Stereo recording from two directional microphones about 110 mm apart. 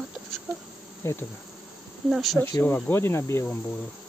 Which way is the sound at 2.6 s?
20° left (ahead or behind).